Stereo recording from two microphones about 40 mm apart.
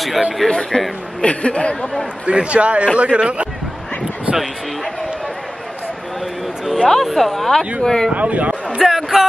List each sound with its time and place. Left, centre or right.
0.4 s speech: centre
1.2 s speech: left
2.2 s a man's voice: right
6.8 s a woman's voice: centre
8.1 s speech: right
8.7 s a sound: centre